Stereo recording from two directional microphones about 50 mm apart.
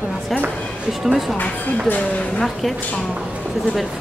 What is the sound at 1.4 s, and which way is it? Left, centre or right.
Speech, left.